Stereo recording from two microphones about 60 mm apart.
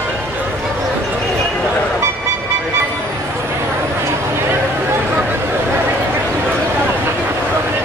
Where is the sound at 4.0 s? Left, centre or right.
Right.